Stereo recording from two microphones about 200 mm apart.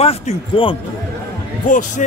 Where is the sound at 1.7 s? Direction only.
40° left (ahead or behind).